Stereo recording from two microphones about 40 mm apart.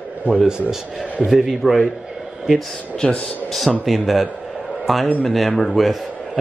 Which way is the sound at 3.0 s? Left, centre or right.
Left.